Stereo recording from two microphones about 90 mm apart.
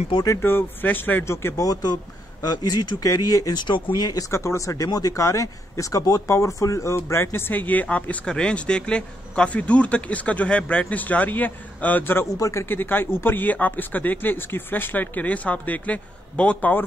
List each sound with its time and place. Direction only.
0.4 s speech: 25° left (ahead or behind); by 4.3 s 45° left (ahead or behind)
4.3 s speech: 30° left (ahead or behind)
12.4 s speech: 35° left (ahead or behind)
12.6 s speech: 20° left (ahead or behind)